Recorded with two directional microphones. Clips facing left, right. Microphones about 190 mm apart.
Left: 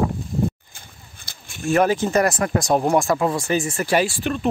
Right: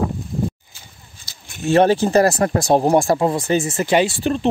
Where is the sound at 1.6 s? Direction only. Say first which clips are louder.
Right 4 dB; 30° right (ahead or behind).